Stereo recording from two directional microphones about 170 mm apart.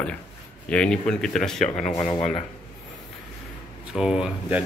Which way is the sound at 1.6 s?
40° left (ahead or behind).